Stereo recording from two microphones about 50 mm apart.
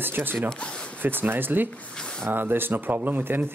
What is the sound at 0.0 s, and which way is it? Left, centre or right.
Speech, right.